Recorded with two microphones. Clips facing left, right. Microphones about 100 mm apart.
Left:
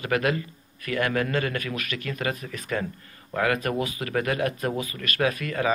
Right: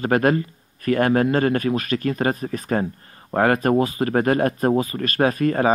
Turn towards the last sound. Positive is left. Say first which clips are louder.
# right 7 dB
turn(degrees=-40)  # may be behind; listen again after turning